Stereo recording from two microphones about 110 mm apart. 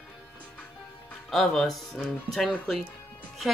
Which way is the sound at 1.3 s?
Centre (ahead or behind).